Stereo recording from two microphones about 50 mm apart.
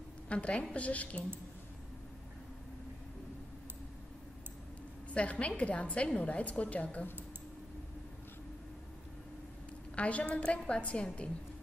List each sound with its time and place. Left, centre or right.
0.3 s a woman's voice: left
5.1 s a woman's voice: left
9.9 s a woman's voice: left